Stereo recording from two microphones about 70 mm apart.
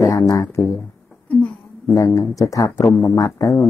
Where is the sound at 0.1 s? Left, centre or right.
Left.